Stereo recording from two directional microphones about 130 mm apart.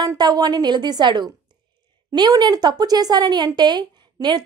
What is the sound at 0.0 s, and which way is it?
A woman's voice, 30° right (ahead or behind).